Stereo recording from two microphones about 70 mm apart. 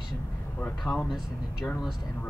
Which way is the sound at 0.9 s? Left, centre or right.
Left.